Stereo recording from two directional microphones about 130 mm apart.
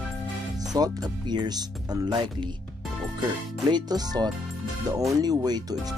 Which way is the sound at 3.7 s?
30° right (ahead or behind).